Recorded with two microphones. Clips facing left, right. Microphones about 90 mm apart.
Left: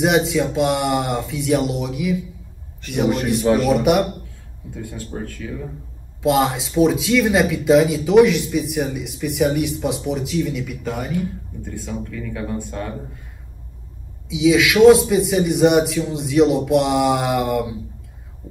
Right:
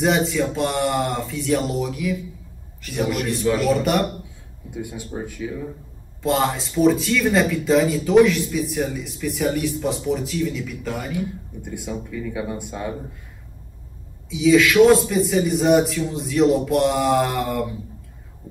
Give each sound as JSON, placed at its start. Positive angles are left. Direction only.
{"t": 0.0, "sound": "speech", "side_deg": 5}
{"t": 3.6, "sound": "speech", "side_deg": 5}
{"t": 4.6, "sound": "speech", "side_deg": -15}
{"t": 6.2, "sound": "speech", "side_deg": 5}
{"t": 11.6, "sound": "speech", "side_deg": -15}
{"t": 14.3, "sound": "speech", "side_deg": 5}